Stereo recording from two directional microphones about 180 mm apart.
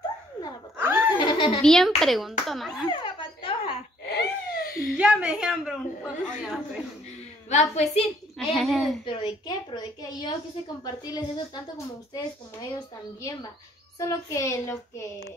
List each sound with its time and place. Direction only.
0.7 s laughter: 10° right (ahead or behind)
1.1 s a sound: 25° left (ahead or behind)
1.6 s a woman's voice: centre (ahead or behind)
2.9 s a sound: 30° left (ahead or behind)
4.2 s a sound: 55° left (ahead or behind)
4.9 s a woman's voice: 5° right (ahead or behind)
7.4 s a woman's voice: 40° left (ahead or behind)
8.4 s a woman's voice: centre (ahead or behind)
9.0 s a woman's voice: 25° left (ahead or behind)
13.9 s a woman's voice: 15° left (ahead or behind)